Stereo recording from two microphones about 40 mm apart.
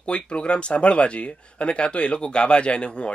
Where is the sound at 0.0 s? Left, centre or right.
Left.